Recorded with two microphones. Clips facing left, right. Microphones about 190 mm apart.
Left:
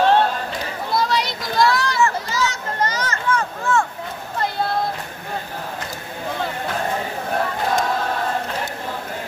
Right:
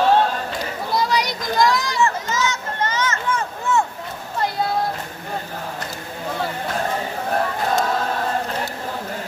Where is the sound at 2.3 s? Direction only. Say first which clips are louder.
Even; 35° left (ahead or behind).